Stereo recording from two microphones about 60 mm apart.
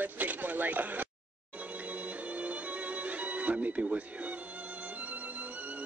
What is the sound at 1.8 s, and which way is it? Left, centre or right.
Music, right.